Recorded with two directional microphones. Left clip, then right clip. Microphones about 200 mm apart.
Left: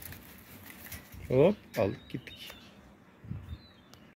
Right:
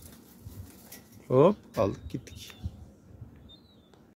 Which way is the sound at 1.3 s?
15° right (ahead or behind).